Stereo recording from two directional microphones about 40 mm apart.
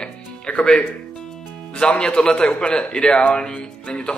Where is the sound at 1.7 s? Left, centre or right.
Left.